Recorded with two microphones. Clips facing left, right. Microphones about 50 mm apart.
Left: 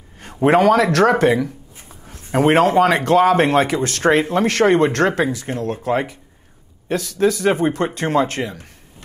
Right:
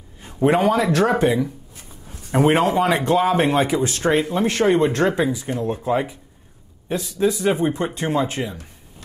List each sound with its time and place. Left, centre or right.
0.2 s speech: left
1.8 s speech: left